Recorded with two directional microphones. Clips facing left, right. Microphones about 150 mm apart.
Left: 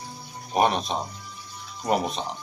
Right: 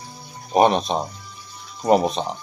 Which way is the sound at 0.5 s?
20° right (ahead or behind).